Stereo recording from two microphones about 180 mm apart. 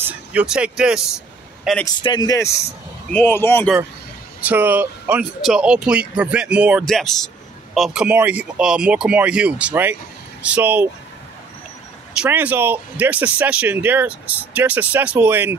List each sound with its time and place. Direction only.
0.0 s a man's voice: 10° right (ahead or behind)
2.0 s speech: 20° left (ahead or behind)
4.4 s speech: 10° right (ahead or behind)
12.2 s speech: 10° right (ahead or behind)